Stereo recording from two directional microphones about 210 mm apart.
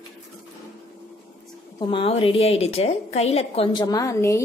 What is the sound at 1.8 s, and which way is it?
A woman's voice, 25° left (ahead or behind).